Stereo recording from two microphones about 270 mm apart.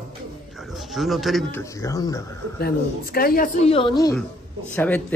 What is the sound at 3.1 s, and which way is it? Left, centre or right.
A woman's voice, left.